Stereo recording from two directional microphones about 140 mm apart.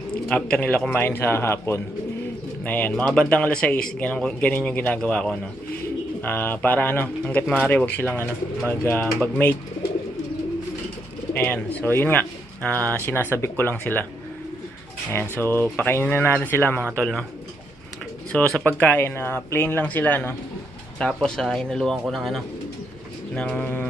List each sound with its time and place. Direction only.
0.3 s speech: 10° left (ahead or behind)
11.3 s speech: 15° left (ahead or behind)
15.4 s speech: 15° left (ahead or behind)
18.3 s speech: 5° left (ahead or behind)